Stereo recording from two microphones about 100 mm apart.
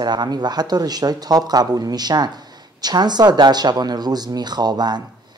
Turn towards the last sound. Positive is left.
turn(degrees=-45)  # may be behind; listen again after turning